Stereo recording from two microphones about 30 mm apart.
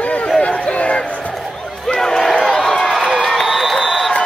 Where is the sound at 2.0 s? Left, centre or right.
Centre.